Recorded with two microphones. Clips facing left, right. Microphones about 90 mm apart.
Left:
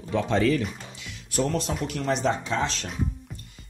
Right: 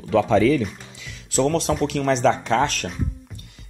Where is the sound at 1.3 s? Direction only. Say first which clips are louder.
Right 6 dB; 80° right; by 2.8 s 60° right (ahead or behind).